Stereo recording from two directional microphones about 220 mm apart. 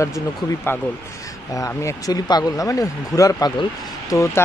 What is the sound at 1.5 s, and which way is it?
A man's voice, 15° left (ahead or behind).